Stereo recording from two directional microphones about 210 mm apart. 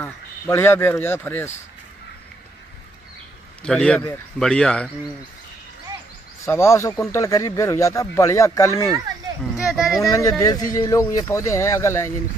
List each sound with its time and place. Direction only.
0.0 s speech: 10° left (ahead or behind)
3.6 s a man's voice: 5° left (ahead or behind)
6.4 s speech: 15° left (ahead or behind)
9.6 s a sound: centre (ahead or behind)
10.0 s speech: 15° left (ahead or behind)